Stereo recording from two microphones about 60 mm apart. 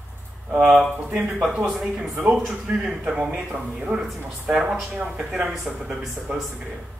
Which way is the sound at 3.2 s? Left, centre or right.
Centre.